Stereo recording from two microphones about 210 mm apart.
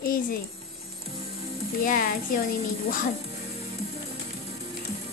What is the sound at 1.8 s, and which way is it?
Speech, 40° left (ahead or behind).